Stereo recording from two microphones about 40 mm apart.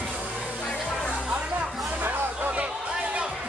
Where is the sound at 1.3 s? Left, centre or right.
Right.